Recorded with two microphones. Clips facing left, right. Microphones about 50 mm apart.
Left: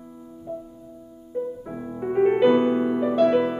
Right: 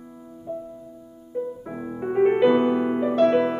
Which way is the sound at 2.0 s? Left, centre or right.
Centre.